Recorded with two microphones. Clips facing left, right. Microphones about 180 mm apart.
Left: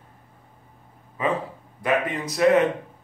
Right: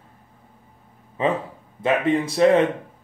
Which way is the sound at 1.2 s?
25° right (ahead or behind).